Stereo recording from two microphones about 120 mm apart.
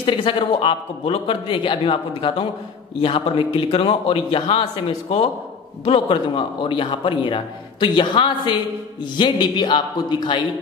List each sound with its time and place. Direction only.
0.0 s a man's voice: 45° left (ahead or behind)
5.9 s a man's voice: 45° left (ahead or behind)